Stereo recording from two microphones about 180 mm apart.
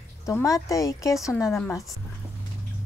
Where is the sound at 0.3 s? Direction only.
20° left (ahead or behind).